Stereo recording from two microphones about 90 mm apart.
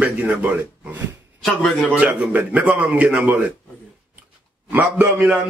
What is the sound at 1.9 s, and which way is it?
A man's voice, 15° right (ahead or behind).